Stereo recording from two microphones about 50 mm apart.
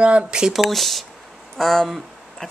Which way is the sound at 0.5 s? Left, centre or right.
Centre.